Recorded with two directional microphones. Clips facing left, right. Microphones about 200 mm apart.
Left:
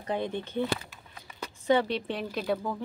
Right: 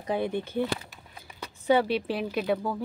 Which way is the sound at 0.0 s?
10° right (ahead or behind).